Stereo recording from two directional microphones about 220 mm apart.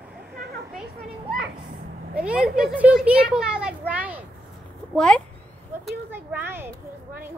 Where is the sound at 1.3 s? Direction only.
40° right (ahead or behind).